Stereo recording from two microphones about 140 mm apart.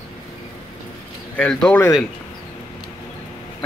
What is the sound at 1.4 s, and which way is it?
Speech, 10° left (ahead or behind).